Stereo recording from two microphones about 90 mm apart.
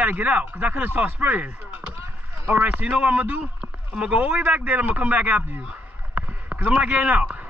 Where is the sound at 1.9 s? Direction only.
30° right (ahead or behind).